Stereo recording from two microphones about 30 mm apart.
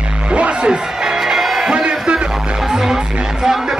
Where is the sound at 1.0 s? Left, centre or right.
Centre.